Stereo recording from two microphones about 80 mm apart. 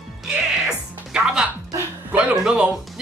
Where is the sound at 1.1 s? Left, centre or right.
Centre.